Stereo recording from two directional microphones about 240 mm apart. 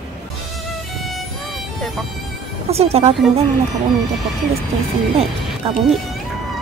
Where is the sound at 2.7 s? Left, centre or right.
Right.